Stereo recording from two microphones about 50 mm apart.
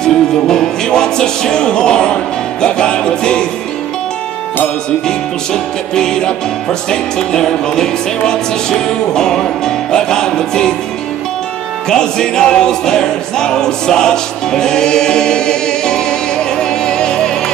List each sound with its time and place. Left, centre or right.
0.0 s music: centre
5.0 s music: centre
11.9 s music: centre